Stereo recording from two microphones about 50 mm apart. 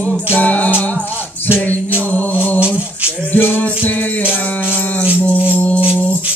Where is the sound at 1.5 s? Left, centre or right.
Left.